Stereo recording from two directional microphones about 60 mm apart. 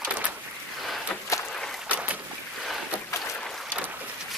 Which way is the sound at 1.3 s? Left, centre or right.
Left.